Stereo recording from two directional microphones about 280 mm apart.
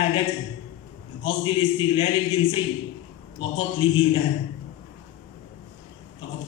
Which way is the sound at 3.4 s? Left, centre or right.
Centre.